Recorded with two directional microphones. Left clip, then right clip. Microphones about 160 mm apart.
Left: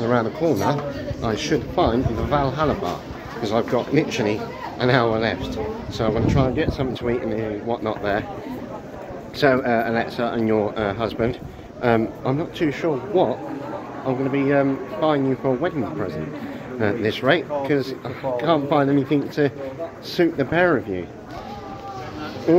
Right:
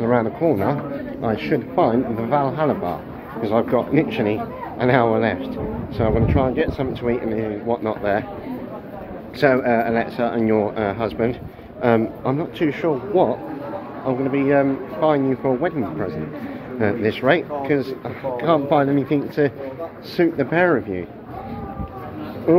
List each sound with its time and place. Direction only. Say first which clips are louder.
0.0 s speech: right 2 dB; 15° left (ahead or behind)
9.4 s speech: right 1 dB; 15° left (ahead or behind)
22.5 s speech: right 1 dB; 20° left (ahead or behind)